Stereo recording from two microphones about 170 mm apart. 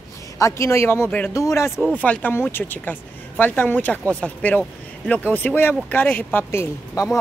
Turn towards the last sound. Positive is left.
turn(degrees=15)  # may be behind; listen again after turning